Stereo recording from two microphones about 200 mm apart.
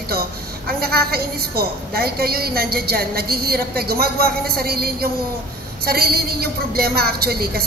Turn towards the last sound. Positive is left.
turn(degrees=-50)  # may be behind; listen again after turning